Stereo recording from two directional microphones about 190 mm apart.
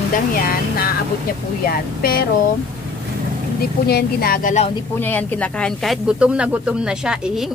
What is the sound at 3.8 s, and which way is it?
Speech, 55° left (ahead or behind).